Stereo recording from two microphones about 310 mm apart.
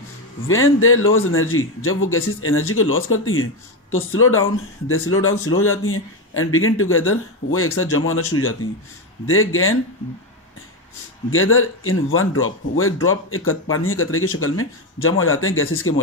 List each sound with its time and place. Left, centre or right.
0.5 s speech: left
11.2 s speech: left